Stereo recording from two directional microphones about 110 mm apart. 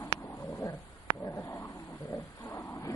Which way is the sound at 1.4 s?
25° left (ahead or behind).